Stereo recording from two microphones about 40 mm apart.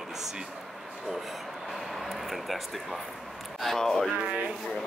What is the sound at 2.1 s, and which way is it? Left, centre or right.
Speech, centre.